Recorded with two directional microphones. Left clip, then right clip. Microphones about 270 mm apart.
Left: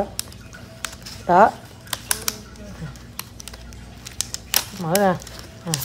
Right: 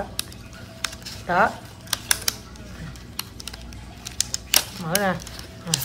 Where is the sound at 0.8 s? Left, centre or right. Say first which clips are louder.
Right 2 dB; centre.